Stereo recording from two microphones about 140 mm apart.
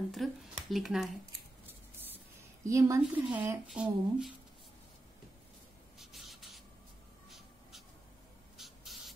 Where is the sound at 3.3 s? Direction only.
10° right (ahead or behind).